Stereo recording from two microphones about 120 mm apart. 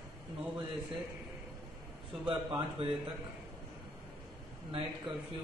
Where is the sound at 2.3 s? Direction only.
40° right (ahead or behind).